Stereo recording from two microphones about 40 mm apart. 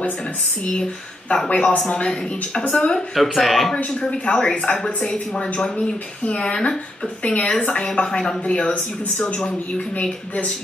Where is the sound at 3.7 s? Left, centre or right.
Left.